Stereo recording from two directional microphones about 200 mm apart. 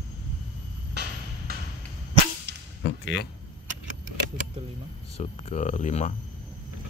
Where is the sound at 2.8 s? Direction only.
55° left (ahead or behind).